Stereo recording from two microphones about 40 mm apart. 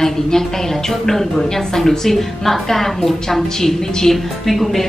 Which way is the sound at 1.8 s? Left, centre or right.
Centre.